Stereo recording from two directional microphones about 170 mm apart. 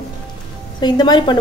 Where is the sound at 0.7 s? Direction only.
25° left (ahead or behind).